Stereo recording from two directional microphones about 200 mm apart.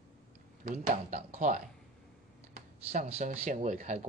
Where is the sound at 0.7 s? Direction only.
35° right (ahead or behind).